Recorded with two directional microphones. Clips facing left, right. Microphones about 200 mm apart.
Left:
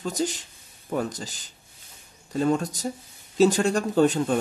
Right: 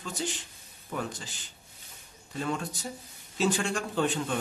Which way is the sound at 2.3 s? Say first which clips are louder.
Left 9 dB; 40° left (ahead or behind).